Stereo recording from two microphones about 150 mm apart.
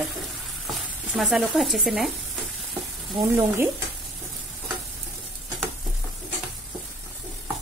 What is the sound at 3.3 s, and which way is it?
Speech, 15° right (ahead or behind).